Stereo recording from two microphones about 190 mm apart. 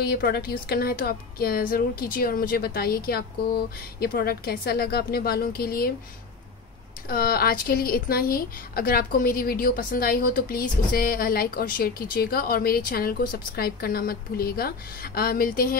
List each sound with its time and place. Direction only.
0.0 s speech: 55° left (ahead or behind)
7.1 s speech: 50° left (ahead or behind)